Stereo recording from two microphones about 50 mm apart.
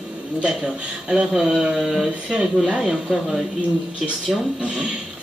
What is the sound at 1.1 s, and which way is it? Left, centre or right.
Speech, centre.